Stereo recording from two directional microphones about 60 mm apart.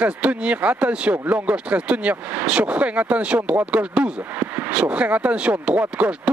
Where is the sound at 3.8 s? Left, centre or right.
Right.